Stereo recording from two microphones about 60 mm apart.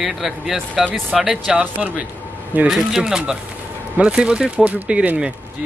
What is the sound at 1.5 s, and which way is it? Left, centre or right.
Speech, centre.